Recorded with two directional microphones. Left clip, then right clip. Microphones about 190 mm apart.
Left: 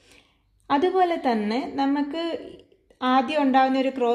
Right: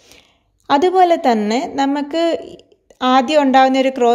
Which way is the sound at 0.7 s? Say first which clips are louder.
Right 9 dB; 40° right (ahead or behind).